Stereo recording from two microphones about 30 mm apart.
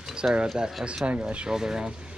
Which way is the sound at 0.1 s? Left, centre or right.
Right.